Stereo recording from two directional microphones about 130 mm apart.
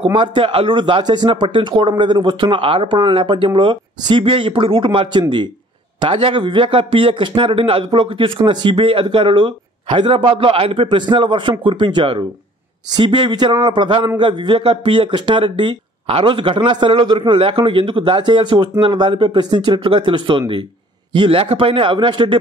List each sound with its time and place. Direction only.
0.0 s speech: 40° right (ahead or behind)